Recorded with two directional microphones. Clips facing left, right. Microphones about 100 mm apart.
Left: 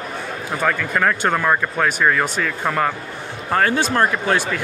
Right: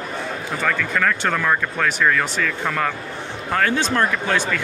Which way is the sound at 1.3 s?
30° left (ahead or behind).